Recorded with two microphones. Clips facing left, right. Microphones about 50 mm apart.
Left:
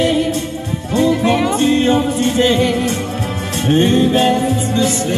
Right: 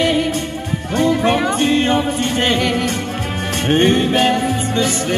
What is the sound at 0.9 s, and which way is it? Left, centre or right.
Music, right.